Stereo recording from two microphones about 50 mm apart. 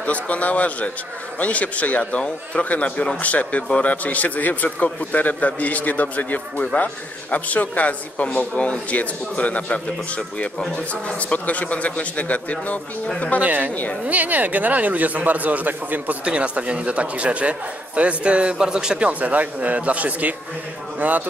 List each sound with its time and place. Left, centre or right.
0.0 s a man's voice: left
13.4 s speech: right
16.3 s speech: right
19.0 s speech: right